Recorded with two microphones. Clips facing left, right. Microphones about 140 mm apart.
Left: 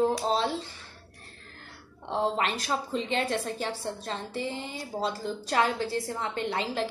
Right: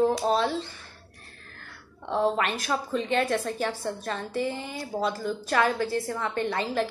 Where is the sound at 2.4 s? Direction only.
25° left (ahead or behind).